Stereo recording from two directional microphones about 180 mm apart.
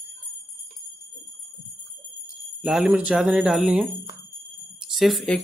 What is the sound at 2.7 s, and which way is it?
Speech, centre (ahead or behind).